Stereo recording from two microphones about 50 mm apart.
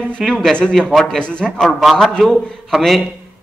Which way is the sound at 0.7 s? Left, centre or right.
Centre.